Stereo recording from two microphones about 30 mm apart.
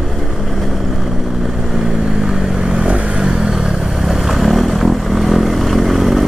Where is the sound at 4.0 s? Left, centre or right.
Centre.